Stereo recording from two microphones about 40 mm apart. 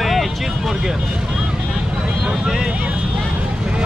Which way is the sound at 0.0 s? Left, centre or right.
Centre.